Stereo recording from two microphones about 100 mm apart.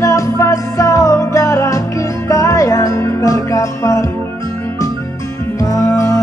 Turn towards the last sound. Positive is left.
turn(degrees=35)  # may be behind; listen again after turning